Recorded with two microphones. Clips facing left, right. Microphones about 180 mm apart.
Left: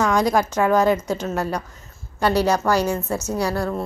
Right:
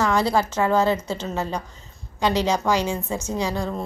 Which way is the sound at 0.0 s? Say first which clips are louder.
Left 2 dB; 15° left (ahead or behind).